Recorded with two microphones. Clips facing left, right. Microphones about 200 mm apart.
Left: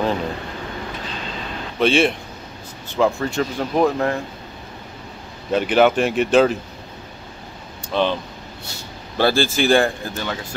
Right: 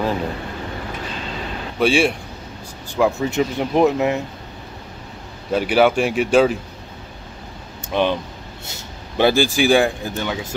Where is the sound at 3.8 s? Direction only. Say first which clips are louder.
Right 2 dB; 10° right (ahead or behind).